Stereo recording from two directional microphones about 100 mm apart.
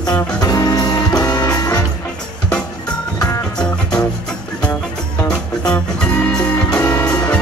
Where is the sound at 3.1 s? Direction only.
40° left (ahead or behind).